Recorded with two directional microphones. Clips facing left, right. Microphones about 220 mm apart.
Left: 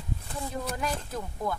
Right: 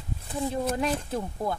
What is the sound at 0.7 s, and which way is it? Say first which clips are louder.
Speech: right 5 dB; 30° right (ahead or behind).